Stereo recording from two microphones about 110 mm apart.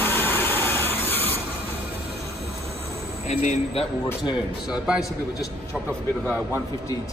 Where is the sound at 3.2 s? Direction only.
85° left.